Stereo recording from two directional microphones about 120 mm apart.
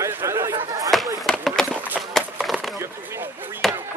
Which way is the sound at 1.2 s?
5° left (ahead or behind).